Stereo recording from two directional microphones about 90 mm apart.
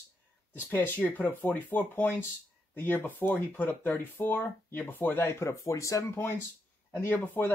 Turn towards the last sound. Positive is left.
turn(degrees=20)  # may be behind; listen again after turning